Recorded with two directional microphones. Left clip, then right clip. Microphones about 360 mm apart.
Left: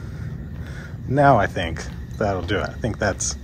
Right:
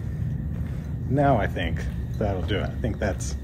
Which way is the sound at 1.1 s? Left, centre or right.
Centre.